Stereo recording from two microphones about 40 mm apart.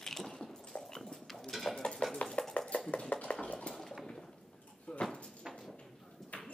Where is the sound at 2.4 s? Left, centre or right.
Left.